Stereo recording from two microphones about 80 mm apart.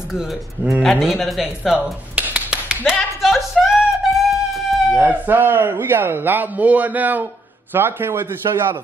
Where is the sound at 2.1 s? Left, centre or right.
Centre.